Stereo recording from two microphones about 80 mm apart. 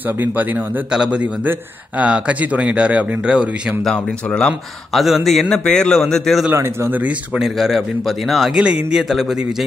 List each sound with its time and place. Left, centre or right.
0.2 s a man's voice: right
3.8 s speech: centre
4.9 s a man's voice: centre
6.5 s speech: right
7.3 s a man's voice: centre
8.5 s a man's voice: centre